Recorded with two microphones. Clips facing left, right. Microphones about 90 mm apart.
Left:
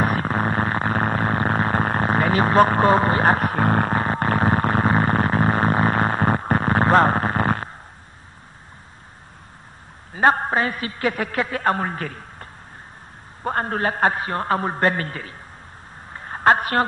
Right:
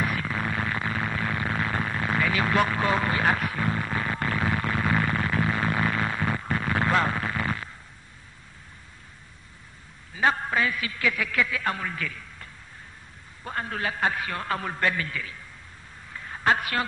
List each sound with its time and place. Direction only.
0.0 s synthesizer: 40° left (ahead or behind)
10.1 s a man's voice: 45° left (ahead or behind)
16.1 s a sound: 40° left (ahead or behind)